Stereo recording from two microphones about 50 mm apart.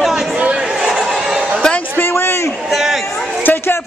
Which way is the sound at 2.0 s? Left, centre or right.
Left.